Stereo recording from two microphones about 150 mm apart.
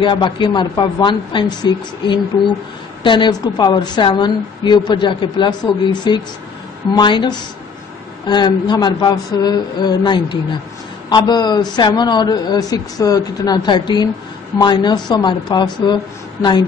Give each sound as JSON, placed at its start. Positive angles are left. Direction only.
{"t": 0.0, "sound": "a woman's voice", "side_deg": 35}